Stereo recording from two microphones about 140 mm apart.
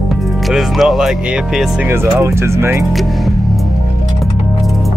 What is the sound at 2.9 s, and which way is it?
Speech, centre (ahead or behind).